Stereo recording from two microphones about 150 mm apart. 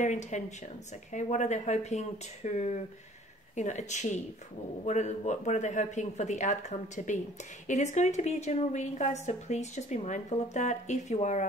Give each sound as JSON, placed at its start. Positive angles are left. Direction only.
{"t": 0.0, "sound": "a woman's voice", "side_deg": 50}